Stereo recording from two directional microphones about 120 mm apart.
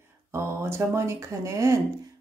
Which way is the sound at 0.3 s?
20° right (ahead or behind).